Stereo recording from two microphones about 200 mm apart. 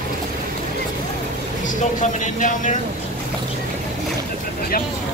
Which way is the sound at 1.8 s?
40° left (ahead or behind).